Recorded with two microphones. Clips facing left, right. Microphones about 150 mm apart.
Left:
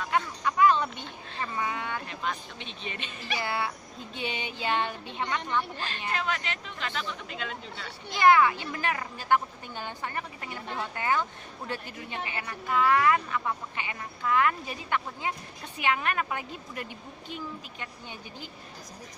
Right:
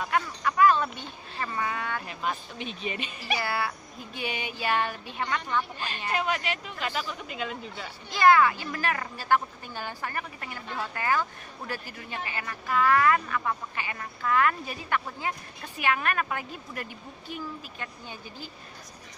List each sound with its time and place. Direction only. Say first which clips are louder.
0.1 s a sound: left 1 dB; 20° left (ahead or behind)
2.0 s speech: right 2 dB; 10° right (ahead or behind)
3.3 s a woman's voice: even; 20° left (ahead or behind)
5.8 s speech: right 2 dB; 15° right (ahead or behind)
8.1 s a woman's voice: right 1 dB; 20° left (ahead or behind)